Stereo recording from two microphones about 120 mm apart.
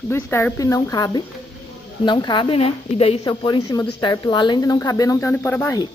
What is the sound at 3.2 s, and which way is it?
A woman's voice, 40° left (ahead or behind).